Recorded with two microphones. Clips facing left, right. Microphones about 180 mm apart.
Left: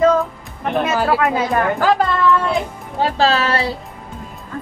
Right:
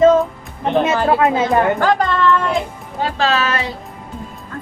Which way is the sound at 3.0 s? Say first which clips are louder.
Left 2 dB; 35° left (ahead or behind).